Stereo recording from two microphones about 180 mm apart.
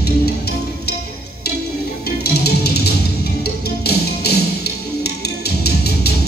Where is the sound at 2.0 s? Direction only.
65° left (ahead or behind).